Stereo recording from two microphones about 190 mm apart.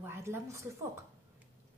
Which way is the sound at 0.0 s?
15° right (ahead or behind).